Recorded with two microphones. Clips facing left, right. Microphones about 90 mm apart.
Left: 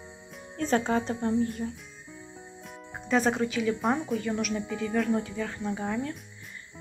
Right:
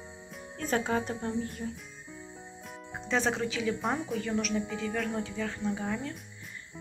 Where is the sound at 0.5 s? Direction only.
5° right (ahead or behind).